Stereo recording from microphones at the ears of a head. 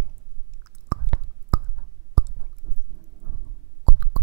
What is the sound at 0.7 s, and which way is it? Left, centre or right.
Whispering, right.